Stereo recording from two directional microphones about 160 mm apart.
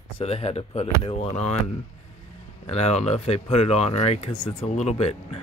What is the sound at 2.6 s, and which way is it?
Speech, 40° left (ahead or behind).